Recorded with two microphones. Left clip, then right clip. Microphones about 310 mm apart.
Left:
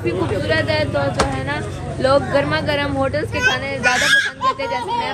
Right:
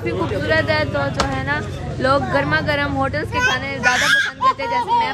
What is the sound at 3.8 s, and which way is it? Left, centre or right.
Speech, right.